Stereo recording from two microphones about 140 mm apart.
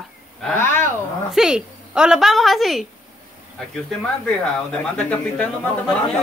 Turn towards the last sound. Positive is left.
turn(degrees=5)  # may be behind; listen again after turning